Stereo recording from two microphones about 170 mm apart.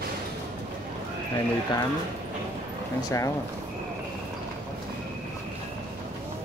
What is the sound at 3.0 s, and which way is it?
Speech, 20° left (ahead or behind).